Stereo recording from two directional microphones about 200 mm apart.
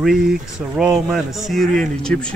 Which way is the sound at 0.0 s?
Centre (ahead or behind).